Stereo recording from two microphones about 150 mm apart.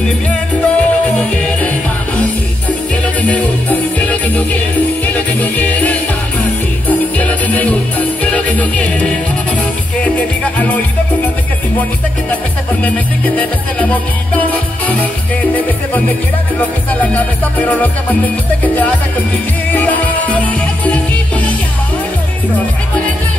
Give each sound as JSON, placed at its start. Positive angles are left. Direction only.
{"t": 0.0, "sound": "music", "side_deg": 10}
{"t": 3.2, "sound": "music", "side_deg": 10}
{"t": 12.8, "sound": "music", "side_deg": 10}
{"t": 16.5, "sound": "music", "side_deg": 10}